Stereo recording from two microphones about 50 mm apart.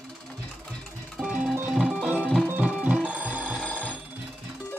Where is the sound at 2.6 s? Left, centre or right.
Right.